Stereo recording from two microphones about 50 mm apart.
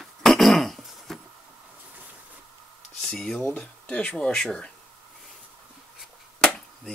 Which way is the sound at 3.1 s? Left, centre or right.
Centre.